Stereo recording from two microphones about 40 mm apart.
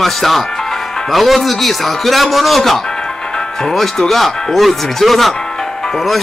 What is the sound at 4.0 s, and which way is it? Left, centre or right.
Speech, centre.